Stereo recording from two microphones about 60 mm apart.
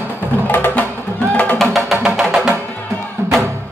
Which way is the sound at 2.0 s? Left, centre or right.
Centre.